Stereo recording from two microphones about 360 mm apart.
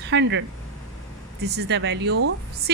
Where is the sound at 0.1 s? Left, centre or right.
Right.